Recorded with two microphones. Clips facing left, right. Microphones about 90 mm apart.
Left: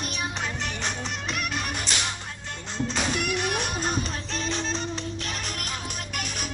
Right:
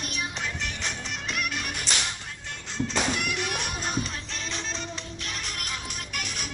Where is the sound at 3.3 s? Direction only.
35° left (ahead or behind).